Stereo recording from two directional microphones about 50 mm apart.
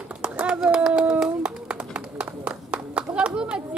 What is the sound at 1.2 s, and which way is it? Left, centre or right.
Clapping, centre.